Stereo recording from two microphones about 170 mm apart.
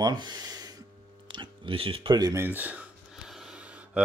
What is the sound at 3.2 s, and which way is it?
Gasp, 5° right (ahead or behind).